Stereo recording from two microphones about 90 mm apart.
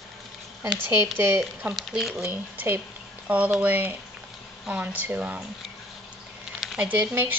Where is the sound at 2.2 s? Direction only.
20° right (ahead or behind).